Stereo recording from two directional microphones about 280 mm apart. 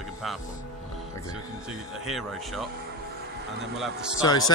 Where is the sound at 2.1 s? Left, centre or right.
Centre.